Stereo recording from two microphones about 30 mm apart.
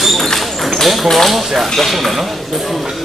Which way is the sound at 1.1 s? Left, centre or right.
Centre.